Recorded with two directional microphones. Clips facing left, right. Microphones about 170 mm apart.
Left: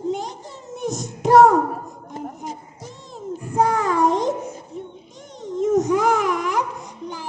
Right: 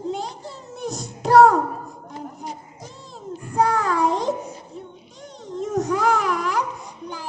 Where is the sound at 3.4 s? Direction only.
20° left (ahead or behind).